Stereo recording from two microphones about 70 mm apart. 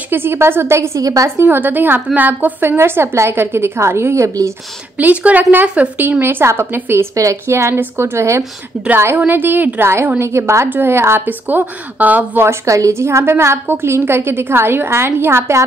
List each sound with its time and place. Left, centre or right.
0.1 s a woman's voice: right
1.0 s a woman's voice: right
1.4 s a woman's voice: right
4.9 s speech: right
6.2 s a woman's voice: right
9.2 s speech: right
9.8 s a woman's voice: right
12.4 s a woman's voice: right